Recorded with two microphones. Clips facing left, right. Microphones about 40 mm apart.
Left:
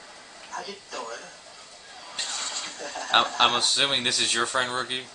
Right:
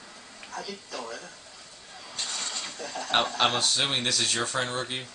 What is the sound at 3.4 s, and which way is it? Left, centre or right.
Speech, centre.